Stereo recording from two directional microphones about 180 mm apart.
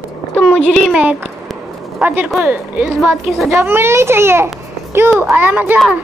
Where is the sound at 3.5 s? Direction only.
15° right (ahead or behind).